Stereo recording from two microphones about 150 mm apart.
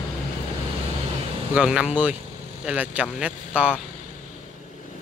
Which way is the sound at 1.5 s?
5° right (ahead or behind).